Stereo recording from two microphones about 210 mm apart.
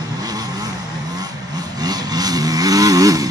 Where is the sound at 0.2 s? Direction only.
20° right (ahead or behind).